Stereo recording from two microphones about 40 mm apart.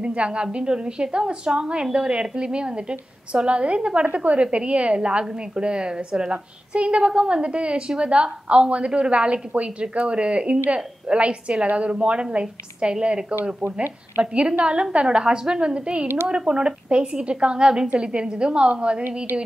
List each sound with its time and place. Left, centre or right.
0.0 s a woman's voice: right
14.6 s a woman's voice: right